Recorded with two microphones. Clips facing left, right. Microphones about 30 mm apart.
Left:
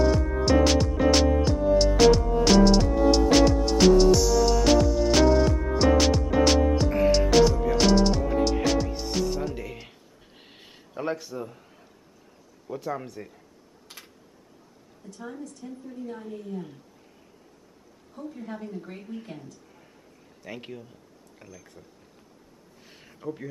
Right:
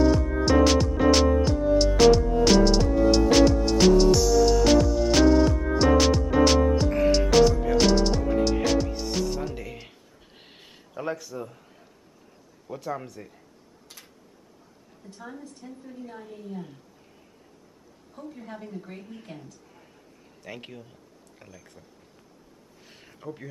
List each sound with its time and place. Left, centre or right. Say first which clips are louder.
0.0 s music: right 2 dB; centre
11.1 s a sound: left 1 dB; centre
11.3 s a man's voice: left 1 dB; centre
13.9 s tick-tock: left 3 dB; centre
15.1 s speech: left 3 dB; centre
18.1 s speech: left 3 dB; centre
22.8 s a sound: left 4 dB; centre